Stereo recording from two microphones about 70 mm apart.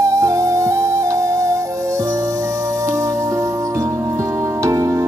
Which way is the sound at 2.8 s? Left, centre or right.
Right.